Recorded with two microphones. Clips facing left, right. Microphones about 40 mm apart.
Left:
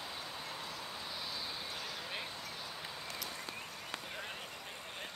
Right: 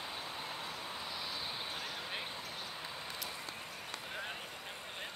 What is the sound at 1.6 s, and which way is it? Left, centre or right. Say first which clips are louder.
Vehicle: right 1 dB; right.